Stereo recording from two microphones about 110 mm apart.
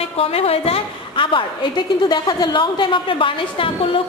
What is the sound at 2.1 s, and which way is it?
A woman's voice, 40° left (ahead or behind).